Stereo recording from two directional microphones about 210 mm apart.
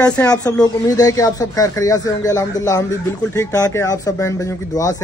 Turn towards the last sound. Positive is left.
turn(degrees=15)  # may be behind; listen again after turning